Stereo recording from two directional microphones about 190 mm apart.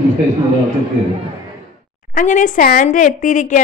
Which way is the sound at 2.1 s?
45° left (ahead or behind).